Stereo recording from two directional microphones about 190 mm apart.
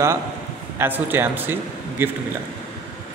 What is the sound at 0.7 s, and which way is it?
Speech, 10° right (ahead or behind).